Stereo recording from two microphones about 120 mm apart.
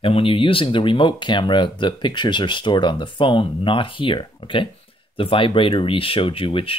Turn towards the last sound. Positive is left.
turn(degrees=50)  # may be behind; listen again after turning